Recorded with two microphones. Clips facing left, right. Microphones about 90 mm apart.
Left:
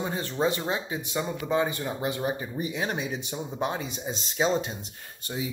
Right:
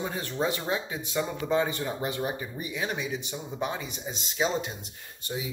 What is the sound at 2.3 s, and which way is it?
Speech, 30° left (ahead or behind).